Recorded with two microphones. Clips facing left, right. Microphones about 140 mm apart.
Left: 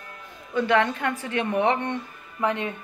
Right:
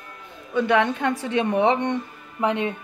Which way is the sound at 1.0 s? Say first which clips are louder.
Right 4 dB; 20° right (ahead or behind).